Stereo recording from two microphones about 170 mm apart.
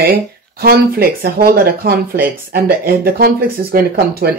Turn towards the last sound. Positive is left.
turn(degrees=-60)  # may be behind; listen again after turning